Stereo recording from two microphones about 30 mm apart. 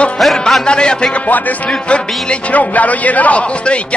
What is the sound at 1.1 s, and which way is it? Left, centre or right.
Speech, left.